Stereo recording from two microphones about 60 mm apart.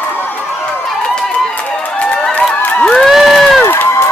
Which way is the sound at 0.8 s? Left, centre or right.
Centre.